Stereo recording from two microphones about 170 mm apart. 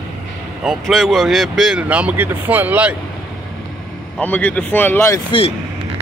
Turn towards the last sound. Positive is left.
turn(degrees=30)  # may be behind; listen again after turning